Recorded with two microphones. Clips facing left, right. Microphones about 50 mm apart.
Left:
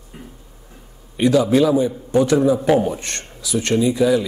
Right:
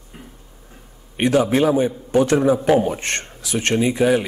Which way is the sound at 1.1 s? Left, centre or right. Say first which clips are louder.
Left 2 dB; right.